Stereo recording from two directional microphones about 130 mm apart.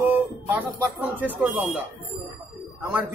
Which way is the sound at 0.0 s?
15° right (ahead or behind).